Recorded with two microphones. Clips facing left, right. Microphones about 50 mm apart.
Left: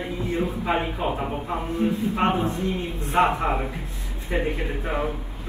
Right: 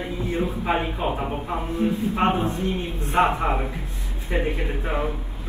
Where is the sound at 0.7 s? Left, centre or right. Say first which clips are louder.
Right 1 dB; right.